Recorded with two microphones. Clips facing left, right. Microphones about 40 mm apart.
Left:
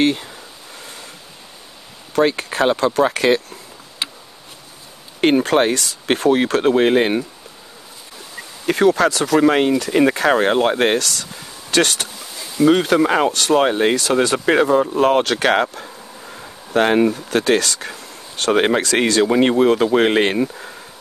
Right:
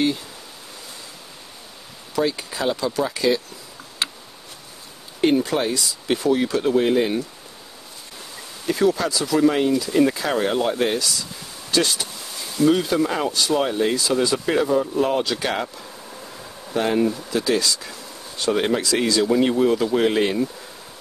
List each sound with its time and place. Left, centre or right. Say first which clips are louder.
2.1 s speech: left 6 dB; left
4.0 s tick-tock: even; centre
5.2 s speech: left 5 dB; left
8.6 s speech: left 5 dB; left
12.5 s speech: left 4 dB; left